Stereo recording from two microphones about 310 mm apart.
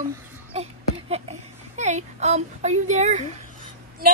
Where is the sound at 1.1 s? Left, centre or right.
Right.